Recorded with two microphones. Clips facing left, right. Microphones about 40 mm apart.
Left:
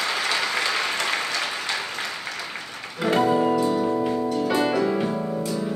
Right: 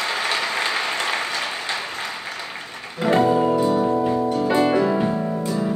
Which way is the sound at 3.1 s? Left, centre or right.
Right.